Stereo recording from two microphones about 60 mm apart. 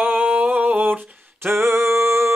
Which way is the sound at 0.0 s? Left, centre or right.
Right.